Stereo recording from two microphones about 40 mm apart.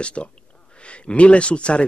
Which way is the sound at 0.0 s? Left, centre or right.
Left.